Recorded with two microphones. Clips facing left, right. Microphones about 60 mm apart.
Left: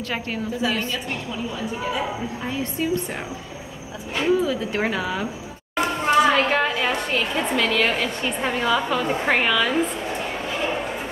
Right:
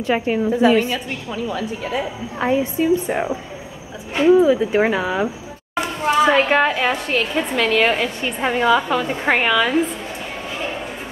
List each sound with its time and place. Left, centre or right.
0.0 s a woman's voice: centre
0.6 s a woman's voice: right
2.6 s a woman's voice: centre
8.6 s a woman's voice: centre